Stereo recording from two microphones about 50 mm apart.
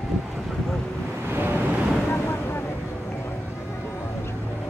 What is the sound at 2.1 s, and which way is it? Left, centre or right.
Vehicle, left.